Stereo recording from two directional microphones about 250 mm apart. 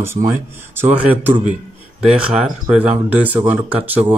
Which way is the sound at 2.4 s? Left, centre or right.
Centre.